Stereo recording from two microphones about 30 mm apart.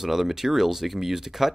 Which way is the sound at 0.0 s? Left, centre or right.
Centre.